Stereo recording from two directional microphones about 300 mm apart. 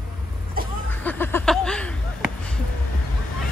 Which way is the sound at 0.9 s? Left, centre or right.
Centre.